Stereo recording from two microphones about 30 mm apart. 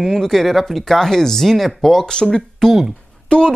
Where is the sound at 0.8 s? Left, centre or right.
Centre.